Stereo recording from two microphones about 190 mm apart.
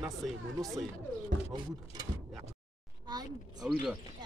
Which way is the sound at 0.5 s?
20° right (ahead or behind).